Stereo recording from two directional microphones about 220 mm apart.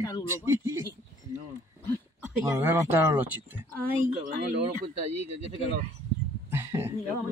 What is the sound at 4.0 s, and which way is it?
Speech, 35° right (ahead or behind).